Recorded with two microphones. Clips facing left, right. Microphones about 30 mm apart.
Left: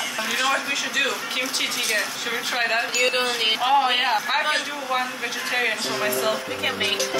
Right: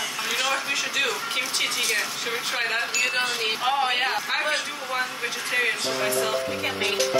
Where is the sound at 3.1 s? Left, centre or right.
Left.